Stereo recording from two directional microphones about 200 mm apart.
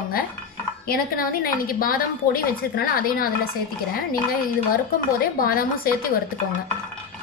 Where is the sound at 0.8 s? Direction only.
45° left (ahead or behind).